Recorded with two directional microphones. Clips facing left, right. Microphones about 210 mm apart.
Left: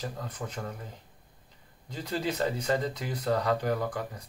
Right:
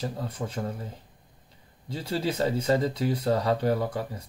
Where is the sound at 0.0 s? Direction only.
30° right (ahead or behind).